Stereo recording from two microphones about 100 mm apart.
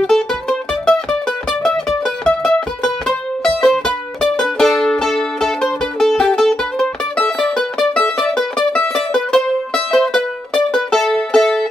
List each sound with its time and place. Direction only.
0.0 s music: 5° left (ahead or behind)